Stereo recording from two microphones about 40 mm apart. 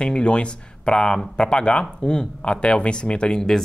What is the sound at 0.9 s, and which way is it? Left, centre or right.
Speech, centre.